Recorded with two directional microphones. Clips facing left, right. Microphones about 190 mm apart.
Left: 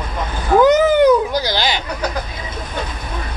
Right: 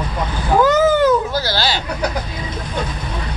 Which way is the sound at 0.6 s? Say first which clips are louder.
Left 2 dB; 15° left (ahead or behind).